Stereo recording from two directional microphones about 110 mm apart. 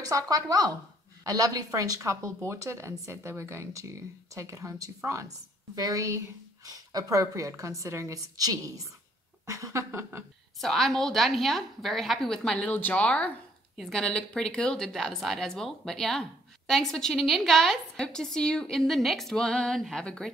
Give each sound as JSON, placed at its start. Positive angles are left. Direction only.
{"t": 0.1, "sound": "a woman's voice", "side_deg": -30}
{"t": 10.6, "sound": "a woman's voice", "side_deg": 0}